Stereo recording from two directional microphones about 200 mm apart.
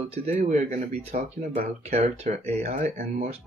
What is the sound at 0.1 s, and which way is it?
Speech, 35° right (ahead or behind).